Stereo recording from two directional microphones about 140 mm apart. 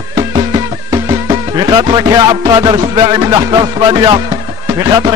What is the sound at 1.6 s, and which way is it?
Speech, 30° right (ahead or behind).